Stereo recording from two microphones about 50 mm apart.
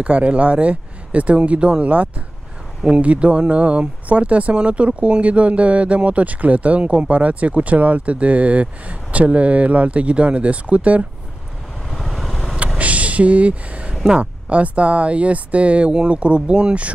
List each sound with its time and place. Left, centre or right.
0.0 s speech: right
11.9 s vehicle: centre
12.7 s vehicle: right
14.0 s speech: right